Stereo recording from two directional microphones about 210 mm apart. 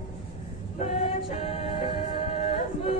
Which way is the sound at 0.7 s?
30° left (ahead or behind).